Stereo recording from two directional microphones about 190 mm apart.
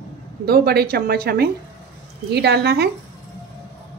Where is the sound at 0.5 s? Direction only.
55° right (ahead or behind).